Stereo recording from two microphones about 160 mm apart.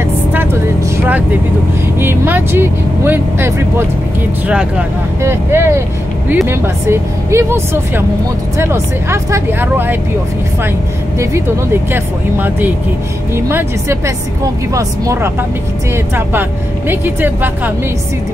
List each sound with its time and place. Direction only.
0.3 s vehicle: 15° right (ahead or behind)
2.0 s speech: 15° right (ahead or behind)
11.1 s speech: 15° right (ahead or behind)
16.3 s speech: 15° right (ahead or behind)